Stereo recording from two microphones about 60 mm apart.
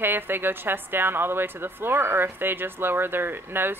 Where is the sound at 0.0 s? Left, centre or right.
Right.